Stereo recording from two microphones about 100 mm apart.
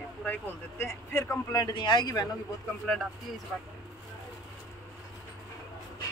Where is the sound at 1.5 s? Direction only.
45° left (ahead or behind).